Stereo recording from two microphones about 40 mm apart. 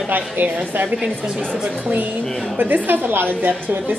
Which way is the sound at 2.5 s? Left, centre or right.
Right.